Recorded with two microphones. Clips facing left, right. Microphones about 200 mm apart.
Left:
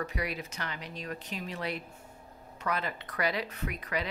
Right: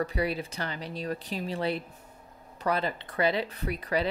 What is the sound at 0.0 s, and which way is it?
Speech, 30° right (ahead or behind).